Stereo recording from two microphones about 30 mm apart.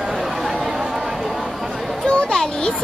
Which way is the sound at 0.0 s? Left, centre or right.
Centre.